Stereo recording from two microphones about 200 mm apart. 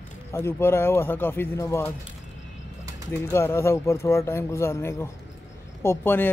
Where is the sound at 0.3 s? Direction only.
10° left (ahead or behind).